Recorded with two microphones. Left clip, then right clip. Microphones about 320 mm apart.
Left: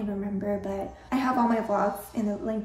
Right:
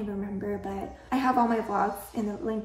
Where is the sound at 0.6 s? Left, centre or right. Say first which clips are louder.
Left 3 dB; centre.